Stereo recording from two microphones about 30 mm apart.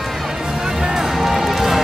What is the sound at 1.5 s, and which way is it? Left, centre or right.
Music, centre.